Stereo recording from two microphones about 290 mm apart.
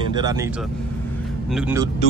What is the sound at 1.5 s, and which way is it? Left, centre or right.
Speech, centre.